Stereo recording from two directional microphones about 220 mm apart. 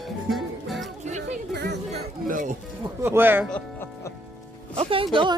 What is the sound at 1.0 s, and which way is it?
Music, 30° right (ahead or behind).